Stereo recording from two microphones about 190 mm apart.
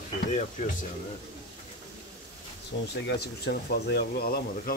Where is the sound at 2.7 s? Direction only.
55° left (ahead or behind).